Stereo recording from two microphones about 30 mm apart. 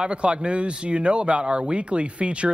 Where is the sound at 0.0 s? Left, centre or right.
Right.